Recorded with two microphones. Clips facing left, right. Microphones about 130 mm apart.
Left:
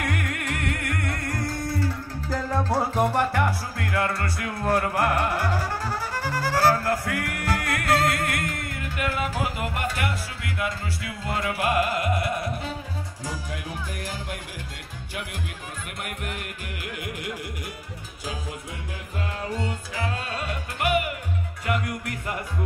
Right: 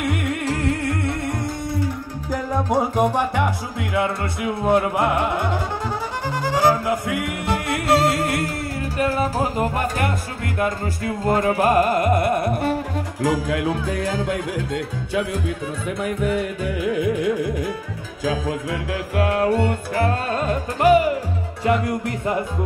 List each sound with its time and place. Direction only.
0.0 s music: 25° right (ahead or behind); by 12.8 s 60° right (ahead or behind)
18.7 s music: 75° right (ahead or behind); by 22.4 s 30° right (ahead or behind)